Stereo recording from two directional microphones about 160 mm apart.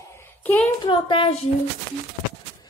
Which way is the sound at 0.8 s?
30° left (ahead or behind).